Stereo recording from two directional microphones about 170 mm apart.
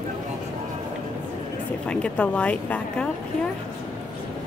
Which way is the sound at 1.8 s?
5° left (ahead or behind).